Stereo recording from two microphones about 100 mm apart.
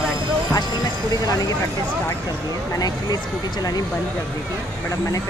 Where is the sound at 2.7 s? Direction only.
40° left (ahead or behind).